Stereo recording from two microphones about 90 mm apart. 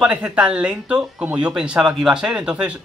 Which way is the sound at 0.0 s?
15° right (ahead or behind).